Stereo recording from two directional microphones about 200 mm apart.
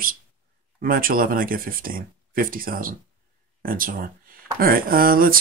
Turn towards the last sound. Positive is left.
turn(degrees=-45)  # may be behind; listen again after turning